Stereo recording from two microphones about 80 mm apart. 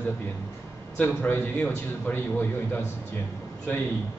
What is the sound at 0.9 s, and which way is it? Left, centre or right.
A man's voice, left.